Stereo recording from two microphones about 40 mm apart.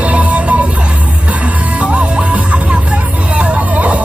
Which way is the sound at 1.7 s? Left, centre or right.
Right.